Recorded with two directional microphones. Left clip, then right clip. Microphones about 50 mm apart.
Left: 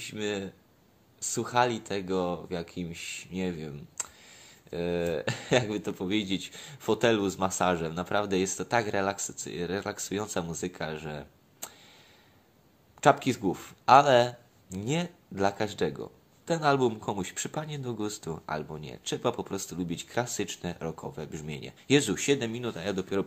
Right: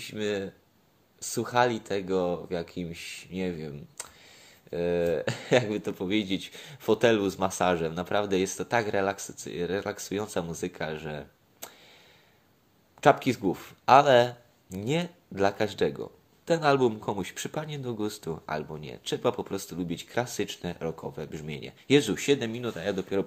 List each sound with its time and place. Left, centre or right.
0.0 s speech: right
3.3 s speech: right
5.7 s speech: right
13.0 s speech: right
21.7 s speech: centre